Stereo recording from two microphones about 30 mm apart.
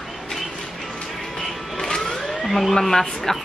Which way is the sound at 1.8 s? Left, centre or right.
Left.